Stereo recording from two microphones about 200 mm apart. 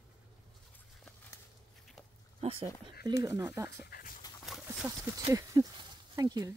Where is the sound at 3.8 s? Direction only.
50° left (ahead or behind).